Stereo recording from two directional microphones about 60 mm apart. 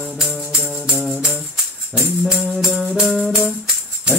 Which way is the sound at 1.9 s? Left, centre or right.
Centre.